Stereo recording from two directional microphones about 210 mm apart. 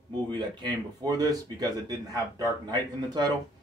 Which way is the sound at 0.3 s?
20° right (ahead or behind).